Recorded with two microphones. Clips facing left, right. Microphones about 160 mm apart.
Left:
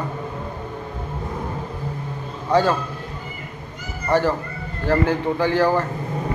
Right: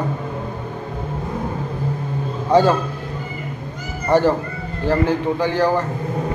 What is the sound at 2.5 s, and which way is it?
Speech, 15° right (ahead or behind).